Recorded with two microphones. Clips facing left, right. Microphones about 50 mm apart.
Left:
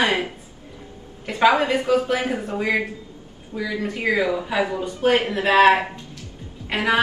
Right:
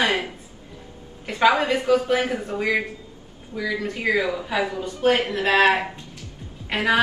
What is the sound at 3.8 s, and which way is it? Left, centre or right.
A woman's voice, centre.